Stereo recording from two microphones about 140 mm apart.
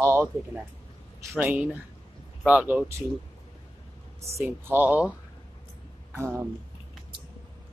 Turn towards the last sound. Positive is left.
turn(degrees=-20)  # may be behind; listen again after turning